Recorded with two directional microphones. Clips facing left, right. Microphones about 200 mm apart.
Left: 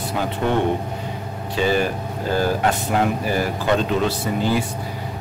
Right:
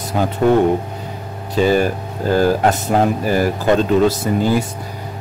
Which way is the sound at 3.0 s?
45° right (ahead or behind).